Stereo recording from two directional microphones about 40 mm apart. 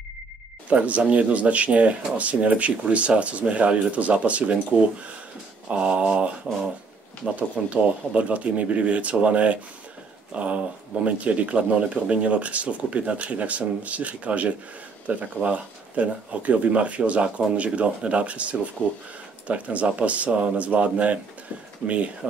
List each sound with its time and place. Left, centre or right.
0.7 s speech: right
5.7 s mantra: right
8.1 s speech: right